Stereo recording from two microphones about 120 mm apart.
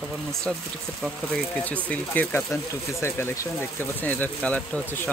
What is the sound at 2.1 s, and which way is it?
Speech, 15° left (ahead or behind).